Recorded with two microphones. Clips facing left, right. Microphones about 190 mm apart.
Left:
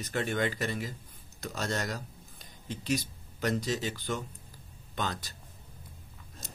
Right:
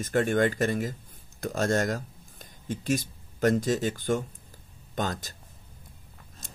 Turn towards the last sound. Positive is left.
turn(degrees=-50)  # may be behind; listen again after turning